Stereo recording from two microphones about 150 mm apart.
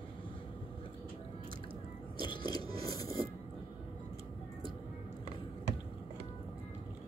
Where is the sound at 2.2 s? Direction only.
30° left (ahead or behind).